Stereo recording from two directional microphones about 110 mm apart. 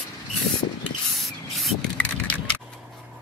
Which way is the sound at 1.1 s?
Centre (ahead or behind).